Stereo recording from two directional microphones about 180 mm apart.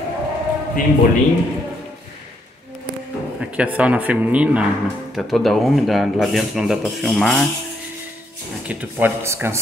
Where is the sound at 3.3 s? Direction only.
5° right (ahead or behind).